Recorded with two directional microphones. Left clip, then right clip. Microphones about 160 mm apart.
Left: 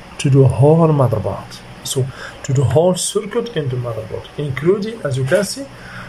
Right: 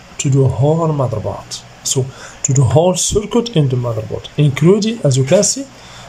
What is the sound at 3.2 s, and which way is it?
Speech, 25° right (ahead or behind).